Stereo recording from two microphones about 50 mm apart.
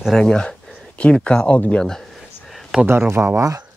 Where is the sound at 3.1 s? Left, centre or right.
Right.